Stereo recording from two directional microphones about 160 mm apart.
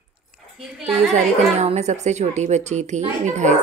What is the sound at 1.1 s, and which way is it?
A woman's voice, 45° right (ahead or behind).